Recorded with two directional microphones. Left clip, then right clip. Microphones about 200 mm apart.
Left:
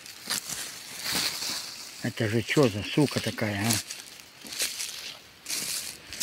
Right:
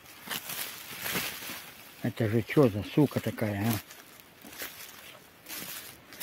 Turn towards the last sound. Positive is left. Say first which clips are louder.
# left 8 dB
turn(degrees=25)  # may be behind; listen again after turning